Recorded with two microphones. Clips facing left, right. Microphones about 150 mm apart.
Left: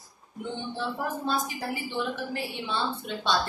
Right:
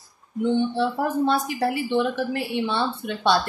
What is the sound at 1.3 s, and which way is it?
A woman's voice, 70° right (ahead or behind).